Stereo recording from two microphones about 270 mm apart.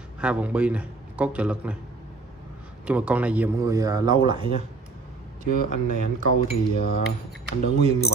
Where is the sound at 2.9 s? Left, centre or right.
Centre.